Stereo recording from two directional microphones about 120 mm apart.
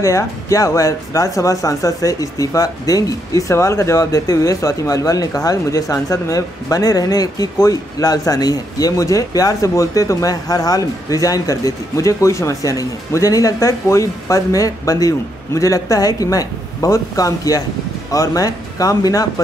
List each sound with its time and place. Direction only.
0.0 s speech: 25° left (ahead or behind)